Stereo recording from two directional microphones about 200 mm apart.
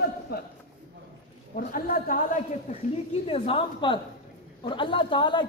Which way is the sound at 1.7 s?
45° left (ahead or behind).